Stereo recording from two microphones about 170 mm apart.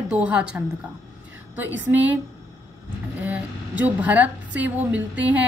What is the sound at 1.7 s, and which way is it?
Speech, 90° right.